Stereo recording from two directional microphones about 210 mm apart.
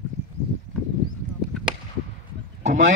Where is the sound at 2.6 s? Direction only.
35° right (ahead or behind).